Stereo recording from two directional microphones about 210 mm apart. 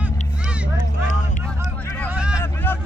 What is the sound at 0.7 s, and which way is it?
Vehicle, 35° left (ahead or behind).